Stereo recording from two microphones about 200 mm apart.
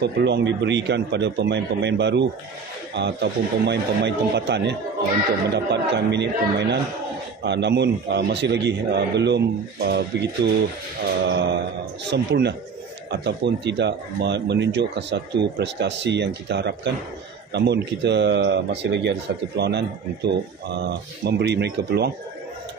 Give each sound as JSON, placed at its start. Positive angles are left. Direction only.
{"t": 0.0, "sound": "a man's voice", "side_deg": -60}